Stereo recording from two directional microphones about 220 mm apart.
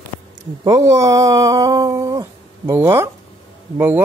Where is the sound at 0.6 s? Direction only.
15° right (ahead or behind).